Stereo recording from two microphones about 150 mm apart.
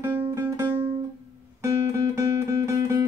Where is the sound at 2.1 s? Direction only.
20° right (ahead or behind).